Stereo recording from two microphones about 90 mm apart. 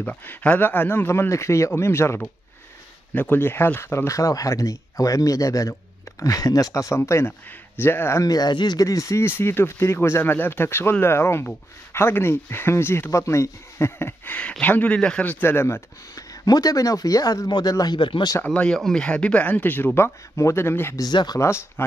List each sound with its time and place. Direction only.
0.0 s speech: 15° left (ahead or behind)
8.2 s speech: 45° left (ahead or behind); by 15.2 s 10° left (ahead or behind)
15.2 s speech: 25° left (ahead or behind)
16.4 s speech: 45° left (ahead or behind); by 18.3 s 65° left (ahead or behind)
18.4 s speech: 15° left (ahead or behind)
21.0 s speech: 50° left (ahead or behind)
21.4 s speech: 30° left (ahead or behind)